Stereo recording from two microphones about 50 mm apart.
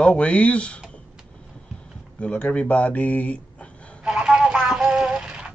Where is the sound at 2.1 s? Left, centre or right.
Left.